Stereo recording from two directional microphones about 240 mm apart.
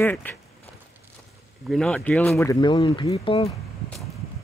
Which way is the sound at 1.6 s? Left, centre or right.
Centre.